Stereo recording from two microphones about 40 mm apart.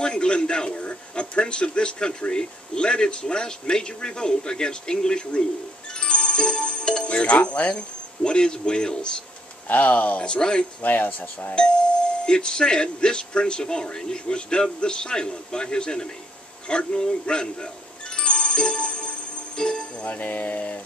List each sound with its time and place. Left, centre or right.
0.0 s a man's voice: left
9.7 s music: left
10.2 s a man's voice: left
10.8 s music: left
12.3 s a man's voice: left
18.1 s music: left
20.1 s music: left